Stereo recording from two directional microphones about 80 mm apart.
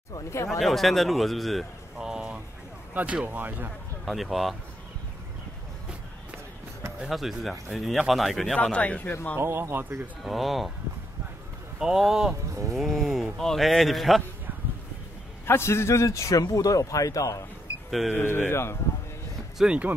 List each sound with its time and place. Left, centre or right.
0.3 s a man's voice: left
0.6 s speech: centre; by 3.7 s right
4.0 s speech: centre
7.0 s speech: centre
8.7 s speech: centre
9.4 s speech: right
10.2 s speech: centre
11.8 s speech: centre
15.4 s a man's voice: left
18.1 s a man's voice: left
19.6 s speech: centre